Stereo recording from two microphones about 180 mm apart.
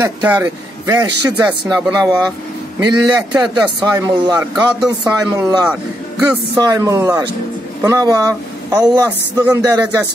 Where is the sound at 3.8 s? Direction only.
20° right (ahead or behind).